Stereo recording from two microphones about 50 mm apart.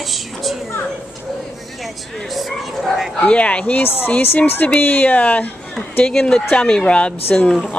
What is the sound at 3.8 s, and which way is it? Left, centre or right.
Speech, left.